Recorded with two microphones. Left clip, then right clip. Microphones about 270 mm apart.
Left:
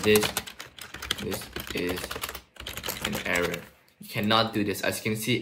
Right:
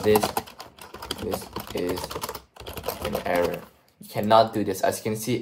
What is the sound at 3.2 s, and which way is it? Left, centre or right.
Speech, centre.